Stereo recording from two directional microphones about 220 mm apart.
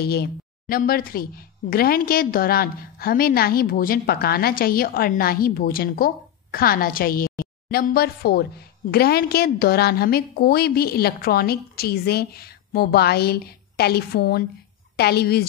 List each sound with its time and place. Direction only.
0.0 s speech: 45° left (ahead or behind)